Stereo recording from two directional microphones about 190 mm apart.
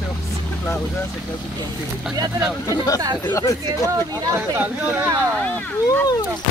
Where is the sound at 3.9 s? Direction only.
15° right (ahead or behind).